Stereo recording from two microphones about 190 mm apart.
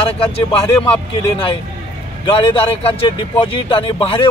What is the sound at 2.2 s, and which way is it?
Speech, 30° left (ahead or behind).